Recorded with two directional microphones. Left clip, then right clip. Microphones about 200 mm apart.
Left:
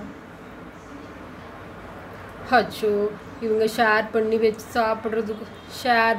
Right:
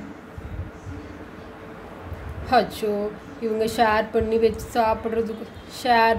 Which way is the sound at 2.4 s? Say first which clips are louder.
Even; 10° right (ahead or behind).